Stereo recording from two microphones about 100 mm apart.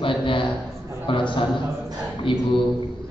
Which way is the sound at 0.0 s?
55° left (ahead or behind).